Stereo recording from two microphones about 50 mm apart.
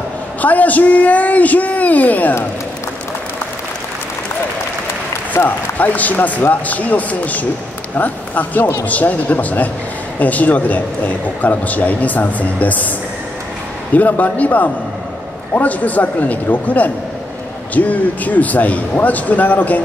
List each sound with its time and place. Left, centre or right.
0.4 s a man's voice: left
5.4 s a man's voice: left
13.9 s a man's voice: left